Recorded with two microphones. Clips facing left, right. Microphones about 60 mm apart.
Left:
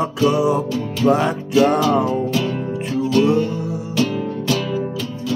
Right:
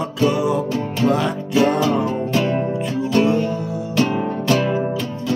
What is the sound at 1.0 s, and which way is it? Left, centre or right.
Music, left.